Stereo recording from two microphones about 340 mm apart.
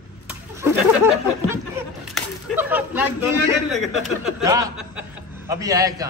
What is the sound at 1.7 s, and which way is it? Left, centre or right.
Speech, centre.